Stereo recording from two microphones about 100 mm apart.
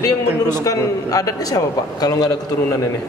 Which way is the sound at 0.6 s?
35° left (ahead or behind).